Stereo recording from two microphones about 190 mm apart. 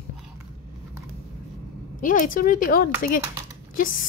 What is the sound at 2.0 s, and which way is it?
A woman's voice, 45° left (ahead or behind).